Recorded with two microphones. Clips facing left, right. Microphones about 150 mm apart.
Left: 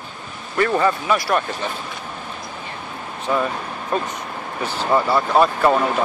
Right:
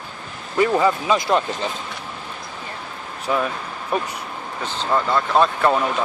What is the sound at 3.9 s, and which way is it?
Speech, 10° right (ahead or behind).